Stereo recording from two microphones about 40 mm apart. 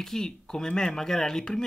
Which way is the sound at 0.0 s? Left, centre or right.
Centre.